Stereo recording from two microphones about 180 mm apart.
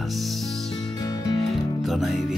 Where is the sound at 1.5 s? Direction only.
Centre (ahead or behind).